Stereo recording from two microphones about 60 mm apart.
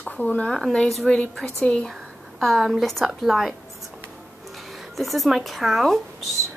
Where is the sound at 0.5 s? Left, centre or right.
Centre.